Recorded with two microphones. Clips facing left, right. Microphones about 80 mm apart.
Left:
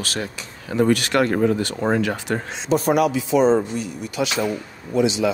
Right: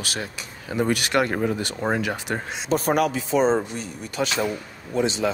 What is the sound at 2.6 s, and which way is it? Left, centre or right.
Speech, right.